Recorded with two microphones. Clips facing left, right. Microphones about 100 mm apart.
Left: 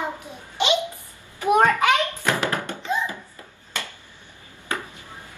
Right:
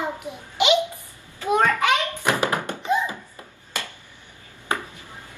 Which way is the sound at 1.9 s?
20° right (ahead or behind).